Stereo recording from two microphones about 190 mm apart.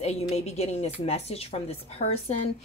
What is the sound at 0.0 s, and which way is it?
Speech, 35° left (ahead or behind).